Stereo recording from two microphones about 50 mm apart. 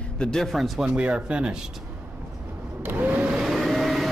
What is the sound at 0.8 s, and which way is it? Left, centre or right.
Speech, right.